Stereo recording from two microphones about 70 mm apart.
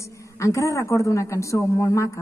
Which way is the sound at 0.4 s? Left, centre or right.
Left.